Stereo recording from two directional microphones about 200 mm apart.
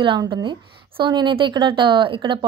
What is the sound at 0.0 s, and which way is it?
Speech, 25° right (ahead or behind).